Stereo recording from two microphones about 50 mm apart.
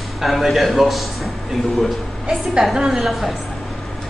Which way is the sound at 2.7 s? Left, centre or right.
Centre.